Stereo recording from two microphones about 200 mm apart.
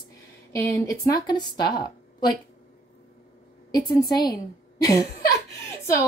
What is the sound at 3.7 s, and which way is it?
Speech, 20° left (ahead or behind).